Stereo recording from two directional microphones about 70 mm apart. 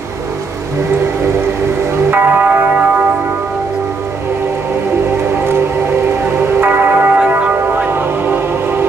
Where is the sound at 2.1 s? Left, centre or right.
Right.